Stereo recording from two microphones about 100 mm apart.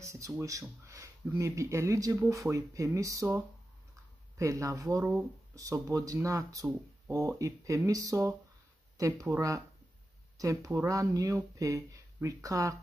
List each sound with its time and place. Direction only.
0.0 s speech: 30° right (ahead or behind)
4.4 s speech: 35° right (ahead or behind)